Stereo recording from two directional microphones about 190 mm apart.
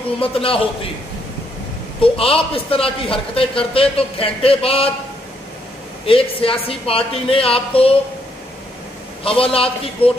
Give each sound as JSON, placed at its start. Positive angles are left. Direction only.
{"t": 0.2, "sound": "speech", "side_deg": 30}
{"t": 2.0, "sound": "speech", "side_deg": 30}
{"t": 6.0, "sound": "speech", "side_deg": 30}
{"t": 9.2, "sound": "speech", "side_deg": 30}